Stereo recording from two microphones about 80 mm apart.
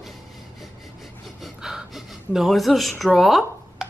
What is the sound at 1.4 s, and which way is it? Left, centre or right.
A woman's voice, centre.